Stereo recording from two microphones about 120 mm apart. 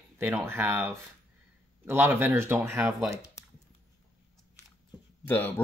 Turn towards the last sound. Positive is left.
turn(degrees=15)  # may be behind; listen again after turning